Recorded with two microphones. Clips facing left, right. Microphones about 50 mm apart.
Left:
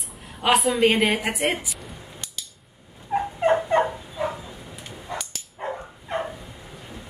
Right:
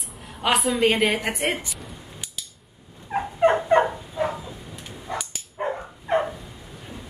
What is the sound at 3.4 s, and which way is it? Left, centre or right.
Dog, right.